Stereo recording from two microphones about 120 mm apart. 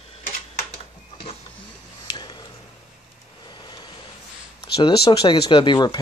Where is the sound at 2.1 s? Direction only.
35° left (ahead or behind).